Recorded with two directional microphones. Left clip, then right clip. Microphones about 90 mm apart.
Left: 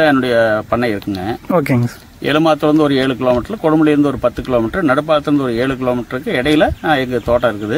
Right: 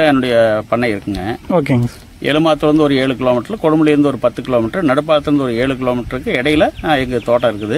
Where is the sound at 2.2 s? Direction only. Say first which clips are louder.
Even; 20° right (ahead or behind).